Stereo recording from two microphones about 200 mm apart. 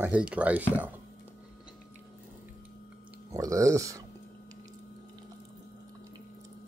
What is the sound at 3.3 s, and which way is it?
Speech, 15° right (ahead or behind).